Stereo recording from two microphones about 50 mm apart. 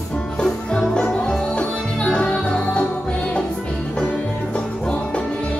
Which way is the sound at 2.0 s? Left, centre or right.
Centre.